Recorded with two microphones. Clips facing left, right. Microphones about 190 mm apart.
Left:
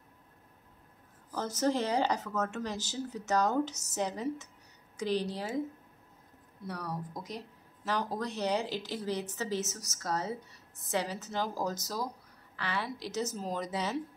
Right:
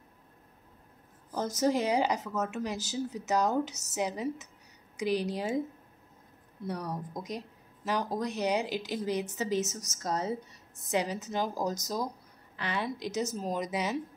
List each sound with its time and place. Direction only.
1.3 s speech: 10° right (ahead or behind)
6.6 s speech: 20° right (ahead or behind)